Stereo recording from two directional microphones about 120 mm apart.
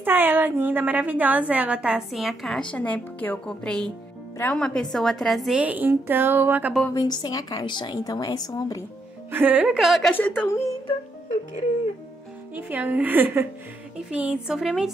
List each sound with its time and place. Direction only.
0.0 s a woman's voice: 15° right (ahead or behind); by 2.6 s centre (ahead or behind)
2.7 s a woman's voice: 15° left (ahead or behind)
5.6 s a woman's voice: 15° right (ahead or behind)
6.9 s a woman's voice: 35° left (ahead or behind)
9.3 s a woman's voice: 15° right (ahead or behind)
9.8 s a woman's voice: centre (ahead or behind)
10.1 s a woman's voice: 15° left (ahead or behind)
12.5 s a woman's voice: 15° right (ahead or behind)